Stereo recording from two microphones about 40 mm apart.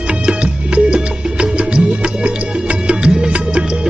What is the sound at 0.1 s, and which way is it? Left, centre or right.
Music, right.